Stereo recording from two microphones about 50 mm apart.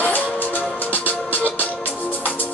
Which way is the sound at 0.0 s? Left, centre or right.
Left.